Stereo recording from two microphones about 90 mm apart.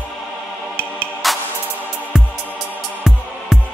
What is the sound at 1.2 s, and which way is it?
Music, centre (ahead or behind).